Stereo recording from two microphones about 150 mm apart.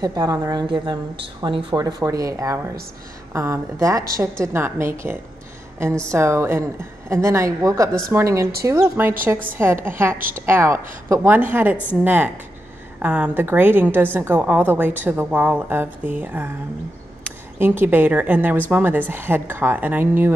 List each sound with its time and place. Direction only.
0.0 s a woman's voice: 25° right (ahead or behind)
10.1 s a woman's voice: 70° right (ahead or behind)
10.4 s a woman's voice: 15° right (ahead or behind)
17.6 s a woman's voice: 15° right (ahead or behind)